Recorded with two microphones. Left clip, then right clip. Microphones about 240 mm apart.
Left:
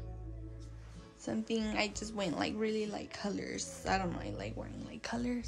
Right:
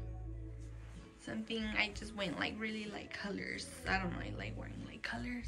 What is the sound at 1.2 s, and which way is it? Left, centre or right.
A woman's voice, centre.